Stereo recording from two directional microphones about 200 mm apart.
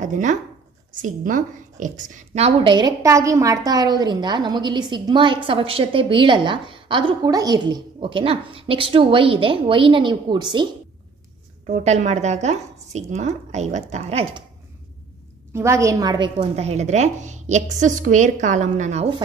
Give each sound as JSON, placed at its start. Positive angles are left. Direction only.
{"t": 0.0, "sound": "a woman's voice", "side_deg": -40}
{"t": 11.6, "sound": "speech", "side_deg": -35}
{"t": 15.5, "sound": "a woman's voice", "side_deg": -15}
{"t": 16.3, "sound": "speech", "side_deg": -35}